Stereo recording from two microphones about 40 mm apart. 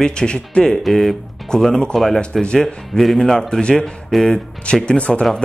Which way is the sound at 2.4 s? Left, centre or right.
Centre.